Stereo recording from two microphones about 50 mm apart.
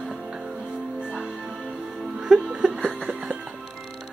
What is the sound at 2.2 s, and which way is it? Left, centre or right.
Music, centre.